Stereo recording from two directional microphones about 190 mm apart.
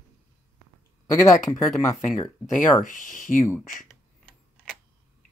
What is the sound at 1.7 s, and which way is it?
Speech, centre (ahead or behind).